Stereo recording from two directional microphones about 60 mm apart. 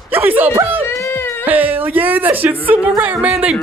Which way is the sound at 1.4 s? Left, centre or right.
Right.